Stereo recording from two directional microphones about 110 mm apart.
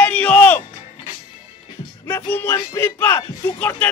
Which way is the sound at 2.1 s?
20° left (ahead or behind).